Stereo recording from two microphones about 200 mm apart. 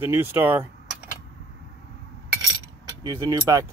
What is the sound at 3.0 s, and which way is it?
Speech, 20° right (ahead or behind).